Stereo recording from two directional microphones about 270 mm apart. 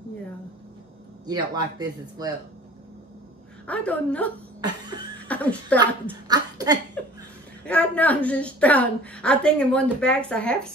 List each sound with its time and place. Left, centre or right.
1.2 s speech: centre
3.6 s a woman's voice: centre
5.3 s a woman's voice: centre
6.2 s speech: centre
7.6 s a woman's voice: centre